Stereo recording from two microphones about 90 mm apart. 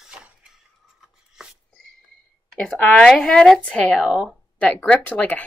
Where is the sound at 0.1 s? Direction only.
10° right (ahead or behind).